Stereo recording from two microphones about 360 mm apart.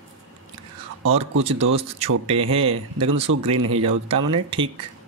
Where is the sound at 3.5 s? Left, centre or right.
Right.